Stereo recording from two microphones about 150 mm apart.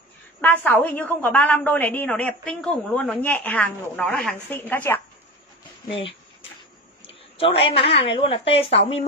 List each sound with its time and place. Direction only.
0.4 s a woman's voice: 10° left (ahead or behind)
5.9 s a woman's voice: 35° left (ahead or behind)